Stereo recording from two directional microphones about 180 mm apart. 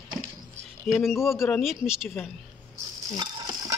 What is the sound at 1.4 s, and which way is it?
Speech, centre (ahead or behind).